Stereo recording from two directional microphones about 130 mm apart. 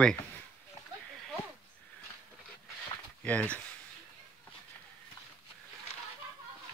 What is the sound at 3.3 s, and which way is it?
Speech, 10° left (ahead or behind).